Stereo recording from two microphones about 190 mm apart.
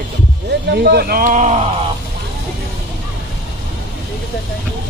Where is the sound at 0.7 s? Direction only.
60° right (ahead or behind); by 1.6 s 40° right (ahead or behind).